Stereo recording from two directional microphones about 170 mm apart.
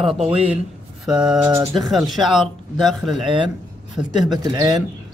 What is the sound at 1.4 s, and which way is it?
Speech, 15° right (ahead or behind).